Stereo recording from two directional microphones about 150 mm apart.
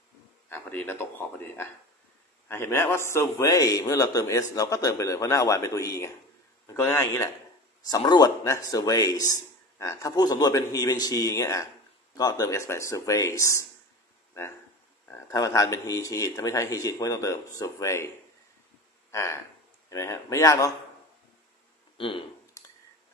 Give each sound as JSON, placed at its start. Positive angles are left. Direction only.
{"t": 0.5, "sound": "a man's voice", "side_deg": 15}
{"t": 7.9, "sound": "a man's voice", "side_deg": 30}
{"t": 15.0, "sound": "a man's voice", "side_deg": 20}
{"t": 19.0, "sound": "a man's voice", "side_deg": 20}
{"t": 21.9, "sound": "a sound", "side_deg": 35}